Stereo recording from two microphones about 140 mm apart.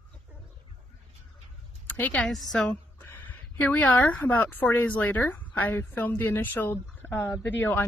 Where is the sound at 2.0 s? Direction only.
15° left (ahead or behind).